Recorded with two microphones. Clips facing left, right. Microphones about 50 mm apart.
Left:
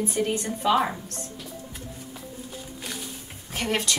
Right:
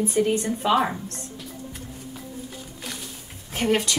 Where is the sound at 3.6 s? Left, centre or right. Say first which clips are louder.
Right 5 dB; centre.